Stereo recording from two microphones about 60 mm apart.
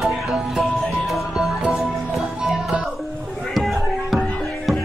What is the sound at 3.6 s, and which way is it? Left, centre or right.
Music, centre.